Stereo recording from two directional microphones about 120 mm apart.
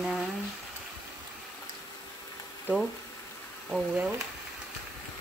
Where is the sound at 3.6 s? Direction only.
5° right (ahead or behind).